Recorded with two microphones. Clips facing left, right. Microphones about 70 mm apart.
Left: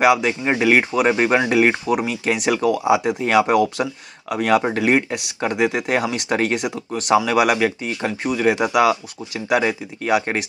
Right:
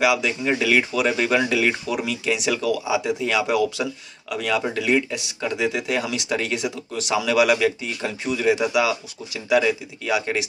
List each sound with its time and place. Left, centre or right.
0.0 s speech: left